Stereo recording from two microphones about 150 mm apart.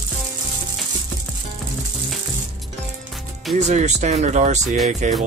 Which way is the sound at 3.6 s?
50° right (ahead or behind).